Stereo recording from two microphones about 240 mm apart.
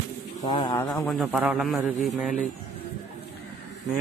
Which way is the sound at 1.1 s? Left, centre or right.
Centre.